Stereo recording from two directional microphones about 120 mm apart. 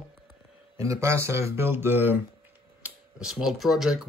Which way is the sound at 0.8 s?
25° right (ahead or behind).